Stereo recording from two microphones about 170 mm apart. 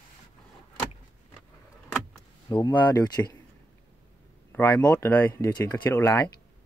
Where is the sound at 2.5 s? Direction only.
25° left (ahead or behind).